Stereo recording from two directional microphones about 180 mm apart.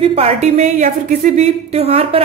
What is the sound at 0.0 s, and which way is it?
Speech, 35° right (ahead or behind).